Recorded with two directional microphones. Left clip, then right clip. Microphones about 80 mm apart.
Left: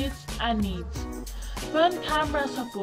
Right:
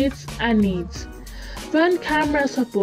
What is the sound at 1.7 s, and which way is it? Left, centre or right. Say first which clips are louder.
Speech: right 4 dB; right.